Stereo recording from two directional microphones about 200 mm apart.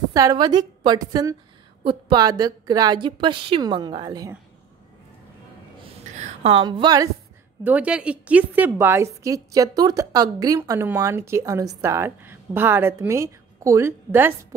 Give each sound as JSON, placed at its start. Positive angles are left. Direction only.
{"t": 0.1, "sound": "a woman's voice", "side_deg": -20}
{"t": 5.9, "sound": "a sound", "side_deg": -35}
{"t": 7.6, "sound": "a woman's voice", "side_deg": -5}